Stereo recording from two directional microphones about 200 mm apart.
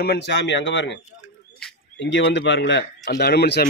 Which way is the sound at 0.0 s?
55° left (ahead or behind).